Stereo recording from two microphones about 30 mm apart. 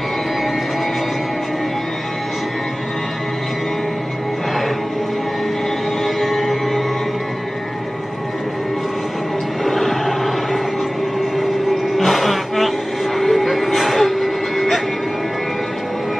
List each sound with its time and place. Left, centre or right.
6.0 s music: centre
9.7 s music: centre
12.0 s music: centre